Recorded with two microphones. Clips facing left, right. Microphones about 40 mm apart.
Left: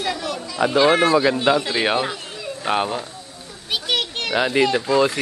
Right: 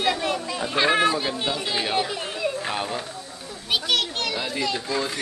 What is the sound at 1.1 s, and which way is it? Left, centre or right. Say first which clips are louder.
Speech: left 9 dB; left.